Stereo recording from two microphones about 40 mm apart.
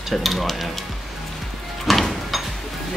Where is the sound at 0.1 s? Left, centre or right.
Centre.